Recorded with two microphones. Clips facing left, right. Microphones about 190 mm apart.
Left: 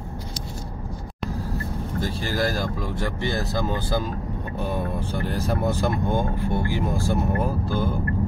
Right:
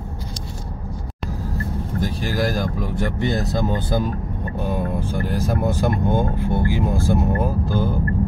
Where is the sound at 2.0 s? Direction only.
15° right (ahead or behind).